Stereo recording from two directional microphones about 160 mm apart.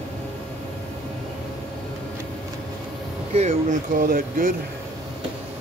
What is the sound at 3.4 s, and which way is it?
Speech, 45° right (ahead or behind).